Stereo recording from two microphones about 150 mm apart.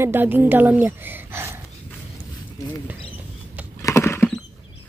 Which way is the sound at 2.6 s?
20° left (ahead or behind).